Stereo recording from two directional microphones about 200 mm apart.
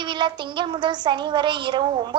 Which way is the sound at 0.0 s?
25° right (ahead or behind).